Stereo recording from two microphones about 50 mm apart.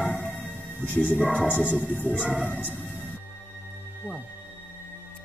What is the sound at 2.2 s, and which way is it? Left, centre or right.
Speech, right.